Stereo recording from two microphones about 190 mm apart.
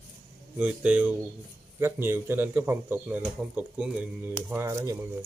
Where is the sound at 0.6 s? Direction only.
5° right (ahead or behind).